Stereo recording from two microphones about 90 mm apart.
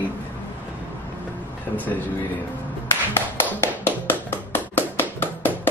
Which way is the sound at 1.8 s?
20° left (ahead or behind).